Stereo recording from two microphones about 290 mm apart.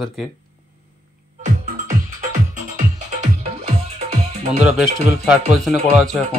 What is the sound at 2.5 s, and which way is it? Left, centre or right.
Music, right.